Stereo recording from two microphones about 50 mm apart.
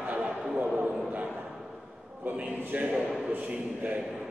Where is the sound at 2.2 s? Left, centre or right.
Right.